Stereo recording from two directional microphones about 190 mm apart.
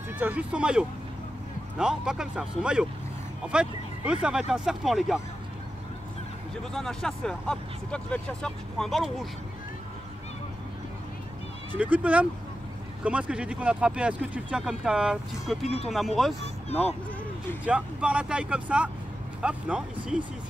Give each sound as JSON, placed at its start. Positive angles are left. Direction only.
{"t": 0.2, "sound": "speech", "side_deg": -5}
{"t": 6.7, "sound": "speech", "side_deg": 0}
{"t": 11.7, "sound": "speech", "side_deg": -10}
{"t": 15.6, "sound": "speech", "side_deg": 30}
{"t": 16.2, "sound": "speech", "side_deg": 0}
{"t": 17.6, "sound": "speech", "side_deg": -5}